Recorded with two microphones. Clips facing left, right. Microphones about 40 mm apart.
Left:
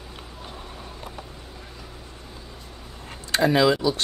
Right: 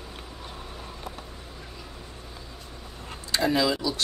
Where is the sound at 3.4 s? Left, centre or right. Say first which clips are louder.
Left 5 dB; left.